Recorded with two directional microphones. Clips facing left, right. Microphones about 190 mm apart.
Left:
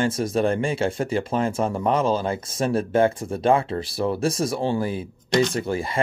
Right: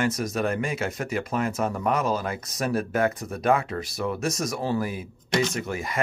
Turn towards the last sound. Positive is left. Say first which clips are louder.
# left 5 dB
turn(degrees=30)  # may be behind; listen again after turning